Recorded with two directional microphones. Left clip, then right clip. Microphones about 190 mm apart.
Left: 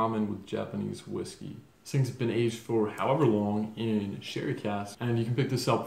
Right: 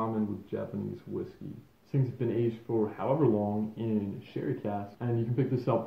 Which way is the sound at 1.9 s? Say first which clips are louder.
Left 1 dB; 5° left (ahead or behind).